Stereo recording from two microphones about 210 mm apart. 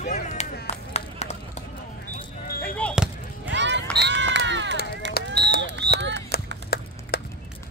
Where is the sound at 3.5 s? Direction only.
55° right (ahead or behind).